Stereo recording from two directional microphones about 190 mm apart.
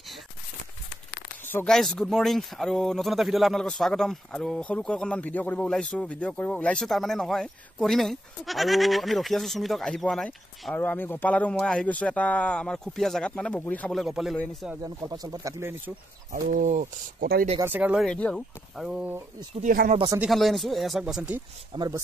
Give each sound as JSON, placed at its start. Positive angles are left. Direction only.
{"t": 1.5, "sound": "speech", "side_deg": 5}
{"t": 14.8, "sound": "speech", "side_deg": -20}
{"t": 16.3, "sound": "speech", "side_deg": -40}
{"t": 17.6, "sound": "speech", "side_deg": -10}
{"t": 18.0, "sound": "speech", "side_deg": 5}
{"t": 19.6, "sound": "speech", "side_deg": -45}
{"t": 20.2, "sound": "speech", "side_deg": 0}
{"t": 21.7, "sound": "speech", "side_deg": -20}